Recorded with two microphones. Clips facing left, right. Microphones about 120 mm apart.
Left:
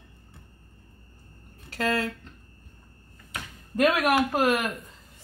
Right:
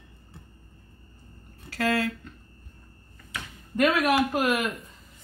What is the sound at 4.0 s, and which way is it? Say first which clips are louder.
Speech: even; 50° left (ahead or behind).